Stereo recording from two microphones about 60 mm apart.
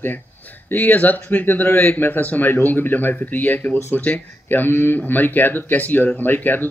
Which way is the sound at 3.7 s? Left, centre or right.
Left.